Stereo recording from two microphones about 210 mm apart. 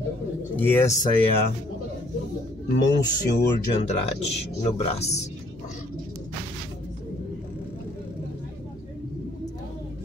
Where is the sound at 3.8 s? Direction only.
30° left (ahead or behind).